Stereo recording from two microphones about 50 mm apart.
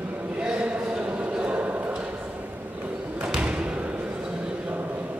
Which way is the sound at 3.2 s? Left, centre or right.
Right.